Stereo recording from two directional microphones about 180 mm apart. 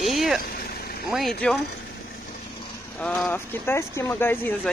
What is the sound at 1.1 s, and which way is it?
Speech, centre (ahead or behind).